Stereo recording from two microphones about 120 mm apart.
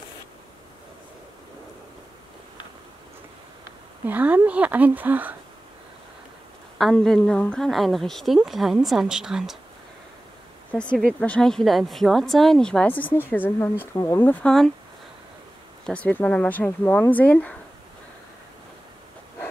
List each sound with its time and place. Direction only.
4.0 s speech: 15° right (ahead or behind)
6.8 s speech: 5° left (ahead or behind)
10.7 s speech: 10° left (ahead or behind)
15.8 s speech: 10° left (ahead or behind)